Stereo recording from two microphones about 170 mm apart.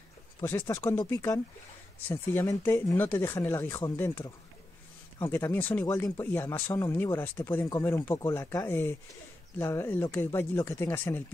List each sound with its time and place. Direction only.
0.4 s speech: 15° left (ahead or behind)